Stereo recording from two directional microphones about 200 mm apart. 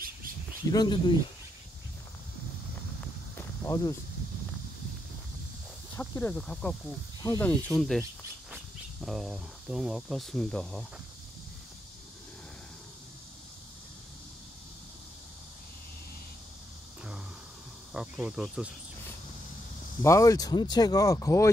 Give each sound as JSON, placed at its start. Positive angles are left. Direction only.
{"t": 0.7, "sound": "speech", "side_deg": 20}
{"t": 3.3, "sound": "a sound", "side_deg": 15}
{"t": 5.9, "sound": "speech", "side_deg": 10}
{"t": 9.0, "sound": "speech", "side_deg": 0}
{"t": 17.9, "sound": "speech", "side_deg": 0}
{"t": 20.0, "sound": "speech", "side_deg": 15}